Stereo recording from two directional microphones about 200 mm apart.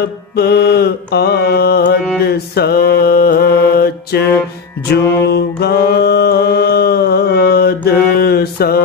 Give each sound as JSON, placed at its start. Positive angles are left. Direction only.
{"t": 0.4, "sound": "mantra", "side_deg": 55}
{"t": 4.8, "sound": "music", "side_deg": 55}